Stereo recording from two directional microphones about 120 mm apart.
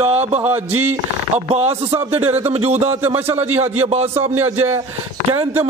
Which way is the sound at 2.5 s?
60° right (ahead or behind).